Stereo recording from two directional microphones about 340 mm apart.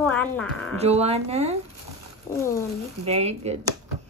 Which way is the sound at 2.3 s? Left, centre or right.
Centre.